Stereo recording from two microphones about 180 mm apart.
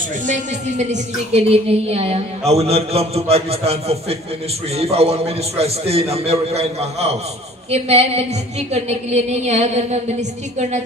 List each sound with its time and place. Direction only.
0.3 s a woman's voice: 40° right (ahead or behind)